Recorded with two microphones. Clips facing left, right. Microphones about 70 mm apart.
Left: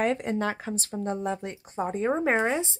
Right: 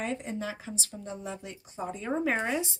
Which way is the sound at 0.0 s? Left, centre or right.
Left.